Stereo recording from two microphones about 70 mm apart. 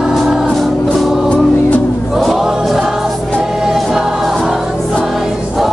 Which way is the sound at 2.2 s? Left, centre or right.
Centre.